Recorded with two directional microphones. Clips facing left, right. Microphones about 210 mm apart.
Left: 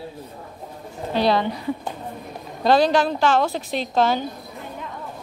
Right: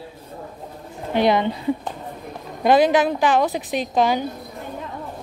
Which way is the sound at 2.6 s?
20° right (ahead or behind).